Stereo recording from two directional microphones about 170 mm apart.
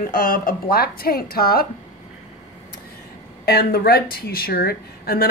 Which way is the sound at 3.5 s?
60° left (ahead or behind).